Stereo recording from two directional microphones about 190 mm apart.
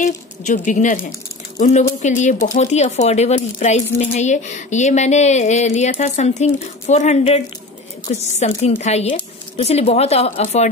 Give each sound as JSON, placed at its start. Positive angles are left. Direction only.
{"t": 0.0, "sound": "speech", "side_deg": 40}